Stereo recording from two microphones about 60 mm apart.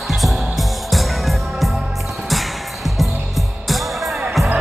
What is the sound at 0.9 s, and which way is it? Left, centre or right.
Music, centre.